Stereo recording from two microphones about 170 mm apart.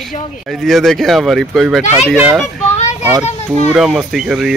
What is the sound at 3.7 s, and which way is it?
Speech, centre (ahead or behind).